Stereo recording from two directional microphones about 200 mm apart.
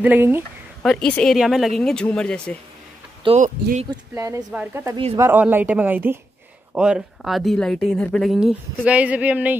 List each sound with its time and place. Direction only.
0.0 s speech: 10° right (ahead or behind)
0.8 s speech: 5° left (ahead or behind)
3.3 s speech: 40° right (ahead or behind)
4.1 s speech: 15° right (ahead or behind)